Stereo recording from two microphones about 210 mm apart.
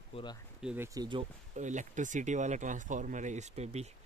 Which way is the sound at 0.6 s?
10° right (ahead or behind).